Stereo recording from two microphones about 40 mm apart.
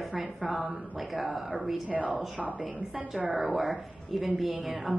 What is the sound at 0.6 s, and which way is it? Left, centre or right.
Speech, right.